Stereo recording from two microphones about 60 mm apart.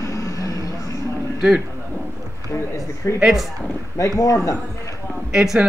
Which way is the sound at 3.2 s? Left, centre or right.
Centre.